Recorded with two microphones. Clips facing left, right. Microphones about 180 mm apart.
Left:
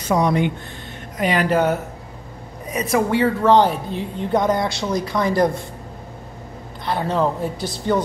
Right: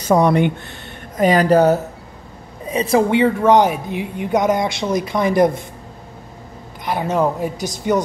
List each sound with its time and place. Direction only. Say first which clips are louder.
0.1 s speech: right 4 dB; 60° right (ahead or behind)
1.1 s a woman's voice: right 5 dB; 40° right (ahead or behind); by 5.5 s 20° right (ahead or behind)
6.9 s speech: right 2 dB; 15° right (ahead or behind)